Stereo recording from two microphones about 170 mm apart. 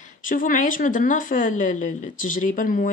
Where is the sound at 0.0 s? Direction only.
50° left (ahead or behind).